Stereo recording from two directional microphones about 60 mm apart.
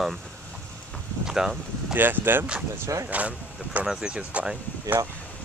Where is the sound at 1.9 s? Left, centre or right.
Right; by 4.5 s centre.